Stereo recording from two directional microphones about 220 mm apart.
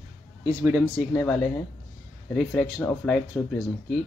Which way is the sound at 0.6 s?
10° right (ahead or behind).